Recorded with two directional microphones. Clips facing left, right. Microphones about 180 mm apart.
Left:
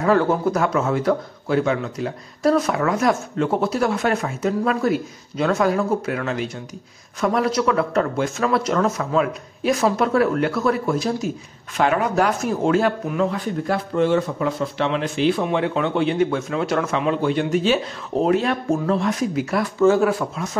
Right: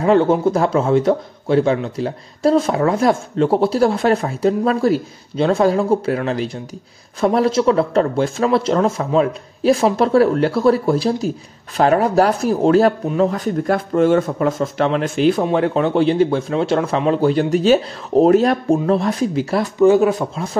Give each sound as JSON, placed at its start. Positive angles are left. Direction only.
{"t": 0.0, "sound": "a man's voice", "side_deg": -25}
{"t": 13.7, "sound": "a man's voice", "side_deg": -50}
{"t": 19.8, "sound": "speech", "side_deg": -20}